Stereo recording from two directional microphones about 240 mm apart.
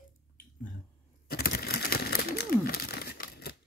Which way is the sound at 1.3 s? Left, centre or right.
Left.